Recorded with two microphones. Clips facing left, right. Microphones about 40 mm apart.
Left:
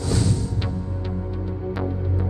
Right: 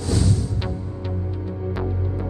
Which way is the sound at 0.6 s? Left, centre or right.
Centre.